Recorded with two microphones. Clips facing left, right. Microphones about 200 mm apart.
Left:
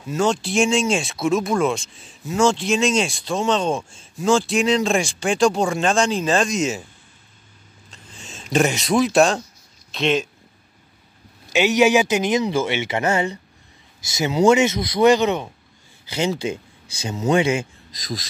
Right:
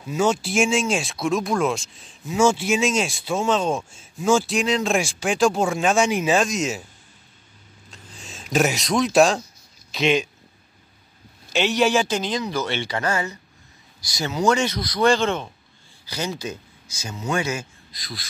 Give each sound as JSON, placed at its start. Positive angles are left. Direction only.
{"t": 0.0, "sound": "speech", "side_deg": -5}
{"t": 7.9, "sound": "a sound", "side_deg": 0}
{"t": 9.8, "sound": "speech", "side_deg": 0}
{"t": 11.5, "sound": "speech", "side_deg": 15}
{"t": 16.1, "sound": "speech", "side_deg": 25}